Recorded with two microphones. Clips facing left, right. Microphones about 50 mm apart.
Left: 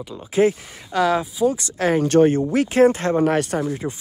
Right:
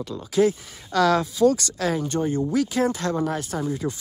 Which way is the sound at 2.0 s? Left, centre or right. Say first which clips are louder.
Left 10 dB; left.